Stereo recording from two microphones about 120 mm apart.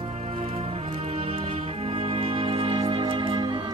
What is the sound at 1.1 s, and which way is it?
Music, 50° right (ahead or behind).